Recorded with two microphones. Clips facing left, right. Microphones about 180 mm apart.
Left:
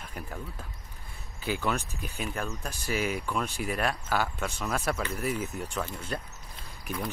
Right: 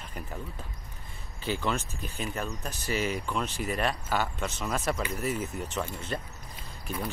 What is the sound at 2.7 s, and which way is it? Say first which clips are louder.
Speech: even; 10° left (ahead or behind).